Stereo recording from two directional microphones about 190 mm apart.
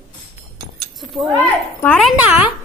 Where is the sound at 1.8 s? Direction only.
5° left (ahead or behind).